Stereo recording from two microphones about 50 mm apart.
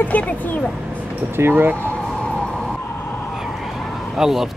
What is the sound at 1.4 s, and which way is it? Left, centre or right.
Speech, right.